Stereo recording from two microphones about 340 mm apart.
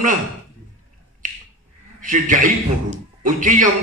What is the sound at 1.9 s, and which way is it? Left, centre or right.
A man's voice, right.